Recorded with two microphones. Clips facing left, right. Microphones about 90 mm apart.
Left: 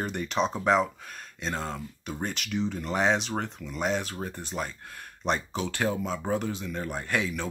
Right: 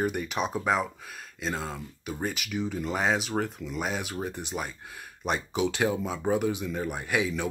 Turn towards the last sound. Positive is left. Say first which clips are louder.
# right 1 dB
turn(degrees=-10)  # may be behind; listen again after turning